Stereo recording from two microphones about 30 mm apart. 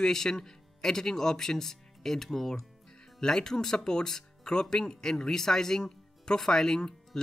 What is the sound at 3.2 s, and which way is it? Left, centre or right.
Speech, left.